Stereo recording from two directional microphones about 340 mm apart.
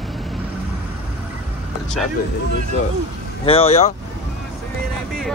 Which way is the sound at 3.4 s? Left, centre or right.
Centre.